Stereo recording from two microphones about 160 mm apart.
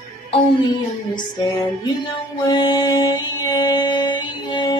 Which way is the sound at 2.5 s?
25° left (ahead or behind).